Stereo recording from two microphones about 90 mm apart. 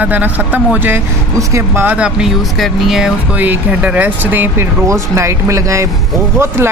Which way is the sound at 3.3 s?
20° right (ahead or behind).